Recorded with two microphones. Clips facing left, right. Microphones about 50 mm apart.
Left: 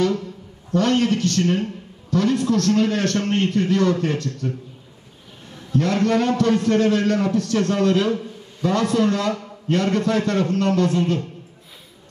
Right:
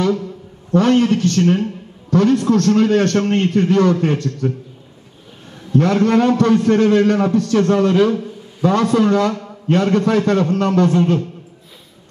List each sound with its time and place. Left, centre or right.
0.7 s a man's voice: right
5.7 s a man's voice: right